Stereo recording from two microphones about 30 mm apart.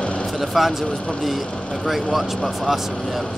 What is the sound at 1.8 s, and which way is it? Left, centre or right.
Speech, centre.